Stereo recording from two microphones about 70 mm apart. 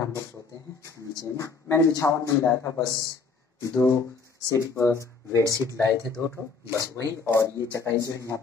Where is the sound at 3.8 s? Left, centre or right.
Left.